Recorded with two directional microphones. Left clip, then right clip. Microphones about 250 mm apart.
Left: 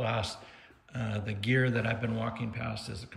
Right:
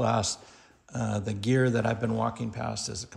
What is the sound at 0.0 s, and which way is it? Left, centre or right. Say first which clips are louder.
Speech: right 6 dB; centre.